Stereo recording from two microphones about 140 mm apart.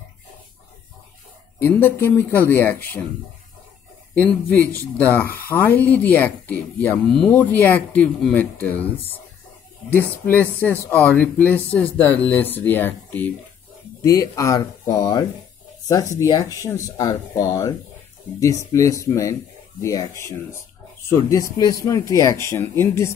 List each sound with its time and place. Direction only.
1.6 s speech: 15° left (ahead or behind)
4.1 s speech: 15° left (ahead or behind)
10.3 s speech: 15° left (ahead or behind)
14.0 s speech: 25° left (ahead or behind)